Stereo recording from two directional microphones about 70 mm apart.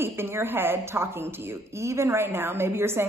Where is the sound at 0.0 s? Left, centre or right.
Right.